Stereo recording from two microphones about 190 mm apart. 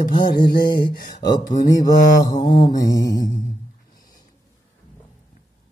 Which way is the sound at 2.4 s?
45° left (ahead or behind).